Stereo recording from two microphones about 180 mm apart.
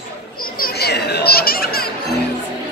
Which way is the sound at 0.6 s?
65° left (ahead or behind).